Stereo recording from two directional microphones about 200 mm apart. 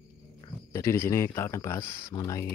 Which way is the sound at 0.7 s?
10° left (ahead or behind).